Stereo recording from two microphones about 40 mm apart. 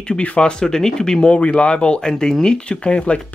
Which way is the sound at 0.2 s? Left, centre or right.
Left.